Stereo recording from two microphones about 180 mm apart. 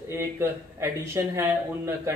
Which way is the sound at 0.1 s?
15° right (ahead or behind).